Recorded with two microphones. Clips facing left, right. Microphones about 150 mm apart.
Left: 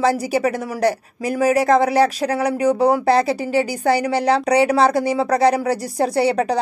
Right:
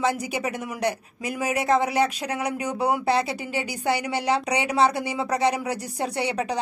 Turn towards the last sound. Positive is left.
turn(degrees=35)  # may be behind; listen again after turning